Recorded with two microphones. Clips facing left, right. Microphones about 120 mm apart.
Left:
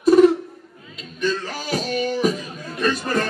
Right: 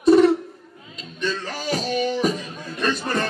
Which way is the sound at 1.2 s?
5° left (ahead or behind).